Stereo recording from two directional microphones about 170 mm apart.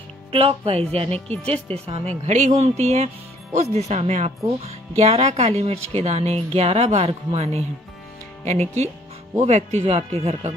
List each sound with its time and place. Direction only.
0.3 s speech: 35° right (ahead or behind)